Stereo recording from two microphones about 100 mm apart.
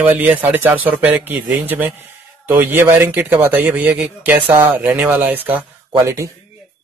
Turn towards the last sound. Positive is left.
turn(degrees=-30)  # may be behind; listen again after turning